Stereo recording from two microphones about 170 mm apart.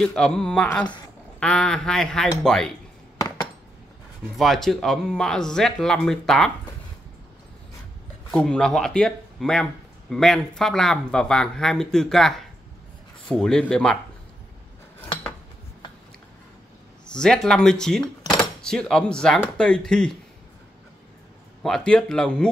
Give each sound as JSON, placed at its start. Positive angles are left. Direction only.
{"t": 0.0, "sound": "speech", "side_deg": 5}
{"t": 3.2, "sound": "dishes", "side_deg": 20}
{"t": 4.4, "sound": "speech", "side_deg": 0}
{"t": 8.3, "sound": "speech", "side_deg": 5}
{"t": 17.1, "sound": "speech", "side_deg": 5}
{"t": 21.6, "sound": "speech", "side_deg": 5}